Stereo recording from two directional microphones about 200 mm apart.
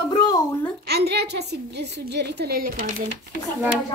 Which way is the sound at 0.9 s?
55° right (ahead or behind).